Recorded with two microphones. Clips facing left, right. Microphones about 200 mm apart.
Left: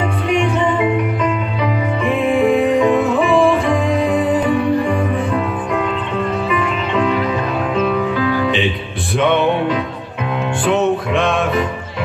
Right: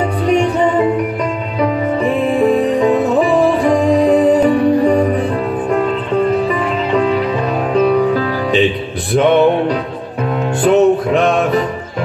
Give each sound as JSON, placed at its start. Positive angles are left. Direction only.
{"t": 1.6, "sound": "music", "side_deg": -40}
{"t": 6.5, "sound": "music", "side_deg": -35}